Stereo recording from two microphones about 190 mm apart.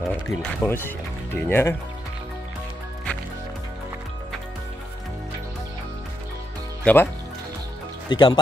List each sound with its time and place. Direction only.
0.0 s speech: 5° left (ahead or behind)
6.8 s speech: 10° left (ahead or behind)
8.1 s speech: 20° left (ahead or behind)